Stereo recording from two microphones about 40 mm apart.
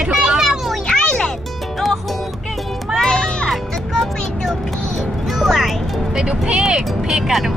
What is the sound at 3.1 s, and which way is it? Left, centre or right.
Music, left.